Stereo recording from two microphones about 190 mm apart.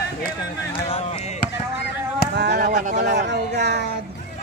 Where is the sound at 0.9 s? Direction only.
30° left (ahead or behind).